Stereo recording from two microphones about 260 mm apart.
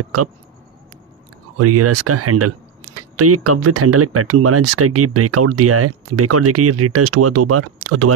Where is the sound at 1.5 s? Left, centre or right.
Right.